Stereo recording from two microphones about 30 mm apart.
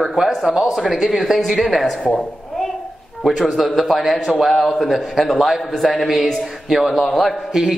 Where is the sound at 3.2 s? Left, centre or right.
Centre.